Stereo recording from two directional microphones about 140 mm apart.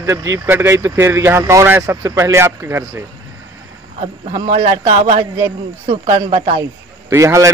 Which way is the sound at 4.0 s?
60° right (ahead or behind).